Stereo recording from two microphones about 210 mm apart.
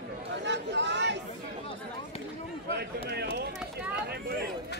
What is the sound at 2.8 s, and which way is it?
Speech, 50° right (ahead or behind).